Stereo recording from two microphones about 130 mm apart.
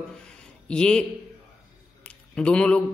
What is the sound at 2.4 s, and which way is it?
Speech, 10° left (ahead or behind).